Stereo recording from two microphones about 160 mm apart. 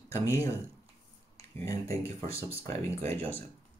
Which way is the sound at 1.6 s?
20° left (ahead or behind).